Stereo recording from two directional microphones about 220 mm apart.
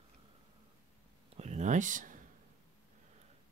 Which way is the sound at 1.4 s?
30° right (ahead or behind).